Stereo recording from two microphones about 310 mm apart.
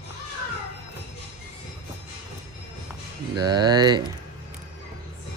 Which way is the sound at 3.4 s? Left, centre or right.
Centre.